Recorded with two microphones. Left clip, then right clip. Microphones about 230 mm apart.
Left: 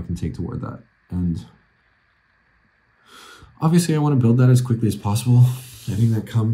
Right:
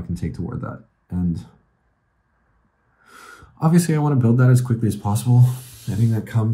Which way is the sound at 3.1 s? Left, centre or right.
Centre.